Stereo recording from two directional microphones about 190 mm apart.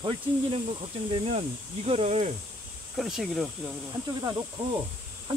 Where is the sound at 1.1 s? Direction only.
30° right (ahead or behind).